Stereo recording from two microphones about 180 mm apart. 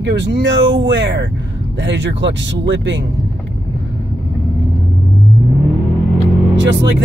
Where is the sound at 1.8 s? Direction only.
85° right.